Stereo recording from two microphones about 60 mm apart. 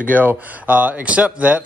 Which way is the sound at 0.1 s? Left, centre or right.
Right.